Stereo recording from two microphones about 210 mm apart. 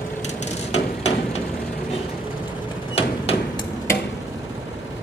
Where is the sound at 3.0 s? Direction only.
30° left (ahead or behind).